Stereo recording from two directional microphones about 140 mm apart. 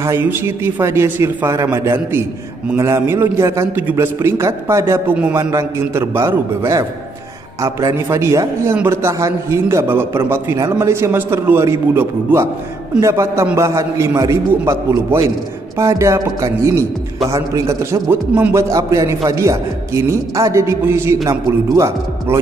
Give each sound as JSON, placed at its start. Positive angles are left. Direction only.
{"t": 0.0, "sound": "a man's voice", "side_deg": -15}